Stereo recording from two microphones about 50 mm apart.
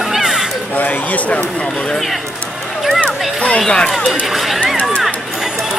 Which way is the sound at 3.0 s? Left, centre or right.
Left.